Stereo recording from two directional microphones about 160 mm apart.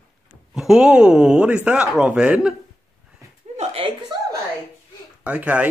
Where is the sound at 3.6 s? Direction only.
35° right (ahead or behind).